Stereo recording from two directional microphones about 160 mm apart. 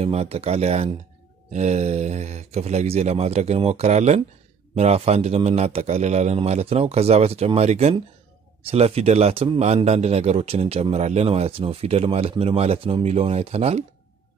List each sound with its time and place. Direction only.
0.0 s a man's voice: 40° right (ahead or behind)